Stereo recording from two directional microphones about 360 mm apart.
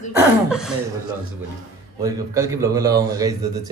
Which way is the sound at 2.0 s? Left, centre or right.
Centre.